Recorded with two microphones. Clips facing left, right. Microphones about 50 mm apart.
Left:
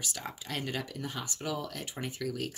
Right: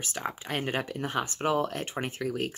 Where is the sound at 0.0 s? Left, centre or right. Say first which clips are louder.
Right 6 dB; right.